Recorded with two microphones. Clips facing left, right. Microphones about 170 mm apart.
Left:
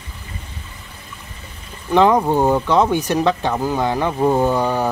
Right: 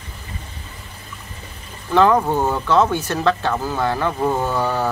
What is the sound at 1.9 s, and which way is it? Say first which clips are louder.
Speech: left 1 dB; 15° left (ahead or behind).